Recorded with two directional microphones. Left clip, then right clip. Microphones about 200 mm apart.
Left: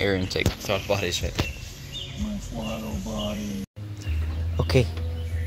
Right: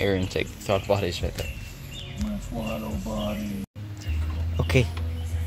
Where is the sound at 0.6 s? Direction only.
30° right (ahead or behind).